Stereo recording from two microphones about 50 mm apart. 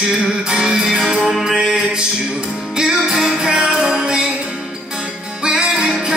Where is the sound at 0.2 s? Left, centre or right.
Centre.